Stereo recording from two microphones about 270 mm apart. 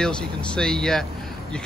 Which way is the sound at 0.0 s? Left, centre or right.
Centre.